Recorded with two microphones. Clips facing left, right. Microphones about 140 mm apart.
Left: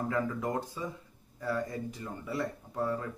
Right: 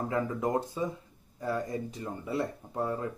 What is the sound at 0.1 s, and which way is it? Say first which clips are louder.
Speech: right 5 dB; 20° right (ahead or behind).